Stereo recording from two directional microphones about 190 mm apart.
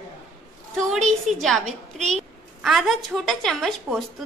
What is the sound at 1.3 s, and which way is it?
Speech, centre (ahead or behind).